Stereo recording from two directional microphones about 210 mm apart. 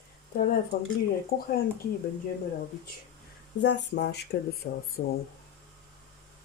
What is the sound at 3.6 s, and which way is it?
Speech, 55° left (ahead or behind).